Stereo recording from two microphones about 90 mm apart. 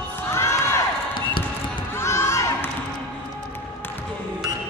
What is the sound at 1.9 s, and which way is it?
Crowd, 30° left (ahead or behind).